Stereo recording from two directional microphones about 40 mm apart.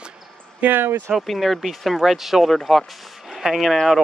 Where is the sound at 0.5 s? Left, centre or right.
Right.